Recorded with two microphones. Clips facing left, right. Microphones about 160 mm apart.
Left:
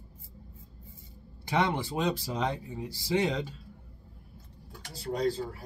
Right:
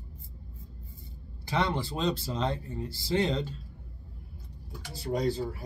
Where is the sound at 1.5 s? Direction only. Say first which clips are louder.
Left 1 dB; 20° left (ahead or behind).